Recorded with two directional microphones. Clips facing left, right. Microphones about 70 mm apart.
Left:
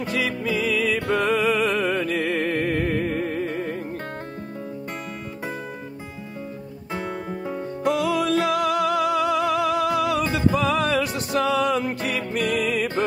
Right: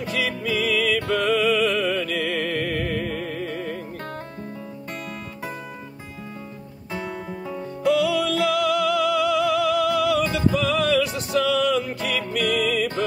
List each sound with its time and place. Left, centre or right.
0.0 s music: left
6.9 s music: left
7.8 s music: left